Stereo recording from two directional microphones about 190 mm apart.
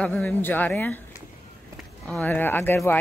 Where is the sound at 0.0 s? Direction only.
10° left (ahead or behind).